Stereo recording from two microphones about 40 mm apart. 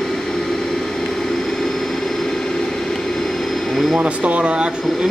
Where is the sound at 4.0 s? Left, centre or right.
Right.